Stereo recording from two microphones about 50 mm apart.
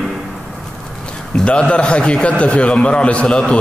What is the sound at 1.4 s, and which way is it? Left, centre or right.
A man's voice, left.